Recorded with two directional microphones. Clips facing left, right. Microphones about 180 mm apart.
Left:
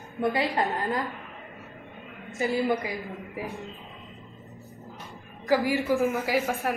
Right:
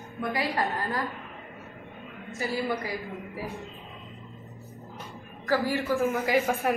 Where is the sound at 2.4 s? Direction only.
20° left (ahead or behind).